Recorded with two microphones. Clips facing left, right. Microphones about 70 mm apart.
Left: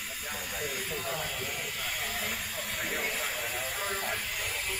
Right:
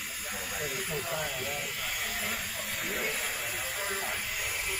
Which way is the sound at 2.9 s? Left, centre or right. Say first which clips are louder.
Even; centre.